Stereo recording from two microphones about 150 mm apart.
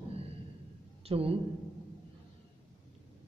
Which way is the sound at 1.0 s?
40° right (ahead or behind).